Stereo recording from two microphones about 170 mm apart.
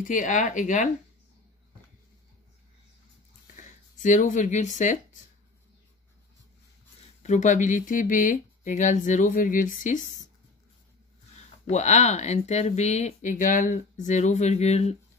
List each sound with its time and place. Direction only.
0.0 s speech: 50° left (ahead or behind)
3.5 s speech: 50° left (ahead or behind)
7.2 s speech: 45° left (ahead or behind)
11.6 s speech: 40° left (ahead or behind)